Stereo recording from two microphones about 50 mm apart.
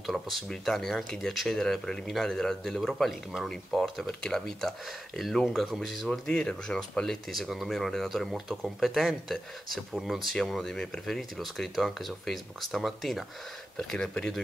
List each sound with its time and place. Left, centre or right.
0.0 s speech: centre
6.2 s speech: centre
7.3 s speech: centre